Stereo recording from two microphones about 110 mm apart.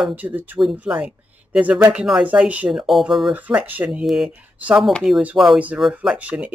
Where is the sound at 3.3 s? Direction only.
15° right (ahead or behind).